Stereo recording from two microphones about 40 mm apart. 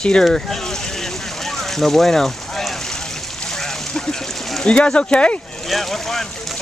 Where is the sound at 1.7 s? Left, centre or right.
Centre.